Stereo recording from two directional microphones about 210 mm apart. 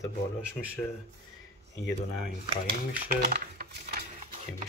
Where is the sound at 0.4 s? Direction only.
5° right (ahead or behind).